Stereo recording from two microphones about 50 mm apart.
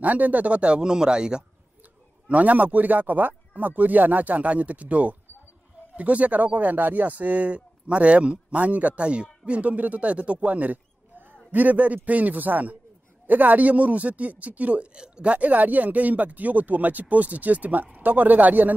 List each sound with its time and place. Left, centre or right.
0.0 s speech: right; by 1.4 s centre
2.2 s speech: right